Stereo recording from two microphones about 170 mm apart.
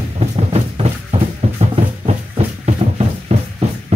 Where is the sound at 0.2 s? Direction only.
35° right (ahead or behind).